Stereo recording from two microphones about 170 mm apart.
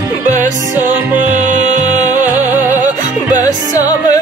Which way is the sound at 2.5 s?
10° right (ahead or behind).